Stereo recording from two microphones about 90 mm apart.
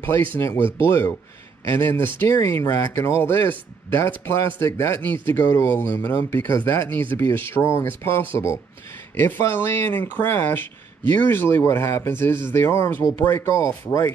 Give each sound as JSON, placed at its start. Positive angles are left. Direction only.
{"t": 0.0, "sound": "speech", "side_deg": 25}
{"t": 6.0, "sound": "speech", "side_deg": 25}